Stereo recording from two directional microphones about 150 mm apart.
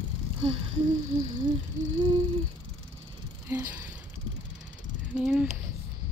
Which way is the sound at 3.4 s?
15° right (ahead or behind).